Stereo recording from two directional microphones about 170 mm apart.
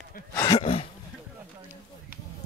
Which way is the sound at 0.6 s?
35° left (ahead or behind).